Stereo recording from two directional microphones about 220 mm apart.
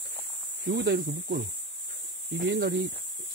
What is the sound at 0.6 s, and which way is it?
Speech, 50° right (ahead or behind).